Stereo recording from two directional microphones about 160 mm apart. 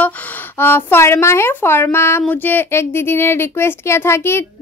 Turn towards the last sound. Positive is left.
turn(degrees=15)  # may be behind; listen again after turning